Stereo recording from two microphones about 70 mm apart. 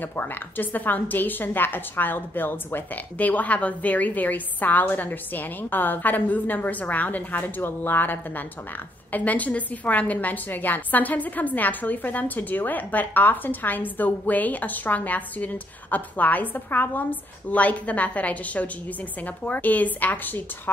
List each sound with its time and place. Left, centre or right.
0.0 s a woman's voice: left